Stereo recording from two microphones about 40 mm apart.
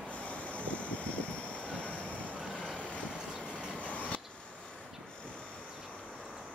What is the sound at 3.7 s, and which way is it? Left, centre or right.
Vehicle, left.